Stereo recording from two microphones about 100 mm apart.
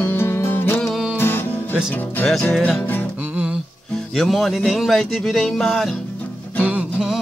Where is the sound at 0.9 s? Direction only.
10° right (ahead or behind).